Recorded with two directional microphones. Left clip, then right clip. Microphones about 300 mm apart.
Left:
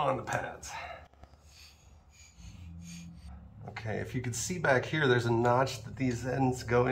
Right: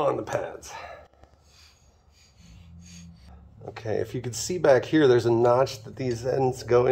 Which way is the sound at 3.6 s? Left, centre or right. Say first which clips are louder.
Right 9 dB; right.